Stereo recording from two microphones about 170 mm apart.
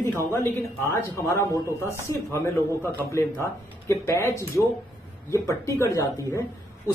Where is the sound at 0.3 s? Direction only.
15° left (ahead or behind).